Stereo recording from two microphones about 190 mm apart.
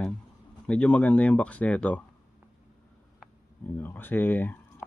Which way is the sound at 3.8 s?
10° left (ahead or behind).